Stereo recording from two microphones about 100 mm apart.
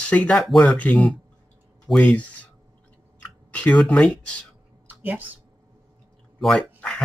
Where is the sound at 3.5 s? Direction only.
15° left (ahead or behind).